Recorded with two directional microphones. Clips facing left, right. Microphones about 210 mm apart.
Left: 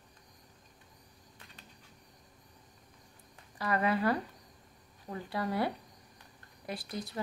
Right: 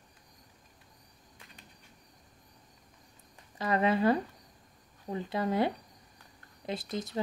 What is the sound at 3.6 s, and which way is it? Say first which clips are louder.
A woman's voice: right 3 dB; 20° right (ahead or behind).